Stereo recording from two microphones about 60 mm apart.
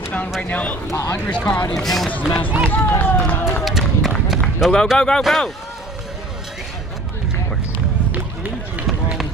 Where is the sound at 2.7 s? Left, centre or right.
Left.